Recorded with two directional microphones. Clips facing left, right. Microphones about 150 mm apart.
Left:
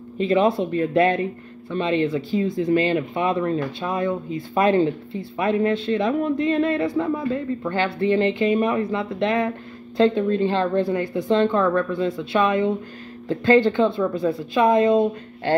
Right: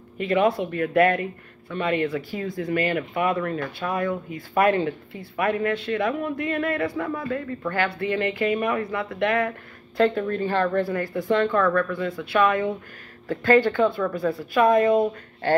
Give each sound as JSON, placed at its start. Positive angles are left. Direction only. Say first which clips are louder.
{"t": 0.2, "sound": "speech", "louder": "left 2 dB", "side_deg": 25}